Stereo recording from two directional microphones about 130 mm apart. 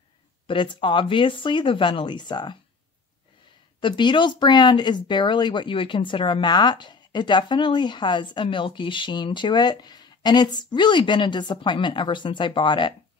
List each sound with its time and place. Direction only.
0.5 s speech: 40° left (ahead or behind)
3.8 s speech: 35° left (ahead or behind)